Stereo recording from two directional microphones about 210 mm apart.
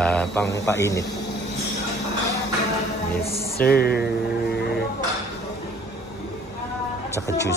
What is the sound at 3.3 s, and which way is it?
Music, 45° left (ahead or behind).